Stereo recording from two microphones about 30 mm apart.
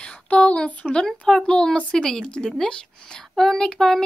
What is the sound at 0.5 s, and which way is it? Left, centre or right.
Speech, left.